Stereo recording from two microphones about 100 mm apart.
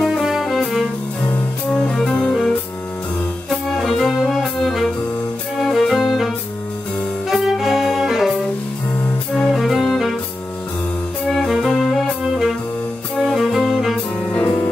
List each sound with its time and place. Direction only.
0.0 s music: 5° right (ahead or behind)
3.4 s music: centre (ahead or behind)
9.5 s music: centre (ahead or behind)
11.3 s music: centre (ahead or behind)
14.3 s music: 15° left (ahead or behind)